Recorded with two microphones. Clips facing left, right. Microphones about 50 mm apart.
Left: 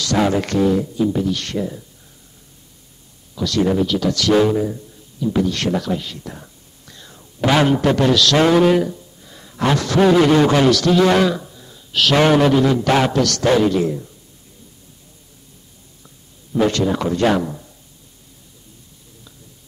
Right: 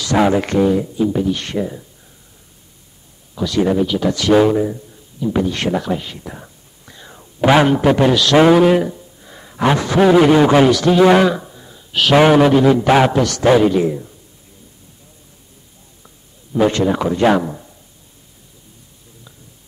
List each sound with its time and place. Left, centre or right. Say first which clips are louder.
0.0 s speech: right 3 dB; centre
3.3 s a man's voice: right 2 dB; centre
16.7 s speech: right 2 dB; centre